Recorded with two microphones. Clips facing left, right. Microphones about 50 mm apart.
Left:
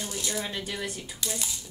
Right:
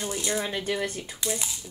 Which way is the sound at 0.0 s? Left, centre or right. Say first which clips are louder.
Right 4 dB; right.